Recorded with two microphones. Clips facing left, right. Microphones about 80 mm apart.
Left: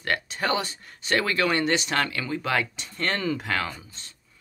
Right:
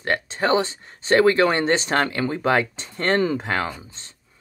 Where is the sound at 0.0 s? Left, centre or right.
Right.